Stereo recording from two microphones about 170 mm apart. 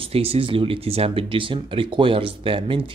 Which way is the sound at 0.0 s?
35° right (ahead or behind).